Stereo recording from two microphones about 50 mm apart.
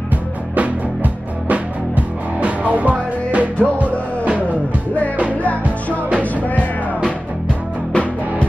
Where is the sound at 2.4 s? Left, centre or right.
Right.